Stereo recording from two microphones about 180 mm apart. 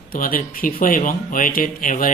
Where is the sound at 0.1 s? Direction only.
50° left (ahead or behind).